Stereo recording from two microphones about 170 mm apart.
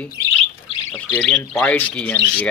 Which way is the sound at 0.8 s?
5° left (ahead or behind).